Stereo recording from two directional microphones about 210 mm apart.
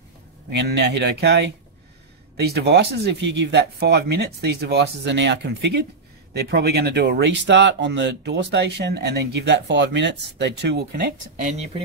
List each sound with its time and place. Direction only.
0.5 s speech: 55° right (ahead or behind)